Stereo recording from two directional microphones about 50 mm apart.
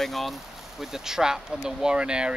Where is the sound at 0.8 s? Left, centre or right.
Centre.